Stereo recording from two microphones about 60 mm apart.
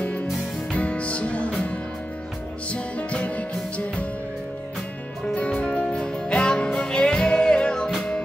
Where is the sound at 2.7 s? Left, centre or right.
Left.